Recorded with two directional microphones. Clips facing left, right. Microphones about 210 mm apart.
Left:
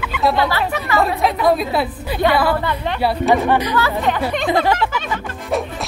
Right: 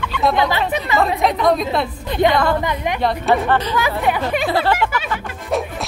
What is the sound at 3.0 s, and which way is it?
Speech, 10° left (ahead or behind).